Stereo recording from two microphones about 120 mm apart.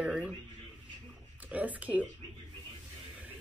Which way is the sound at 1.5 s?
10° right (ahead or behind).